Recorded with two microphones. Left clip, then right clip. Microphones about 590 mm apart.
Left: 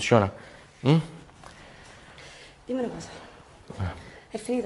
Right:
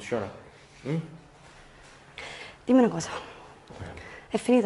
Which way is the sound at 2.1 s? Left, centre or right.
Right.